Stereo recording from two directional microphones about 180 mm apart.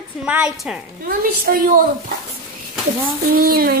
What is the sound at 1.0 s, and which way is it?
Speech, 55° right (ahead or behind).